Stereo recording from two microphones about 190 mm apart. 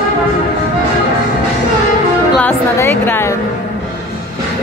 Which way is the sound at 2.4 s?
10° left (ahead or behind).